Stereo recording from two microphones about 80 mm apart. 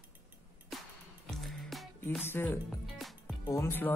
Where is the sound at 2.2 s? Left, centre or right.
Left.